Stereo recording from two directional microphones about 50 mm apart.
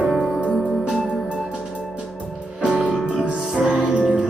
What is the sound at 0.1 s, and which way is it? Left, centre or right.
Music, centre.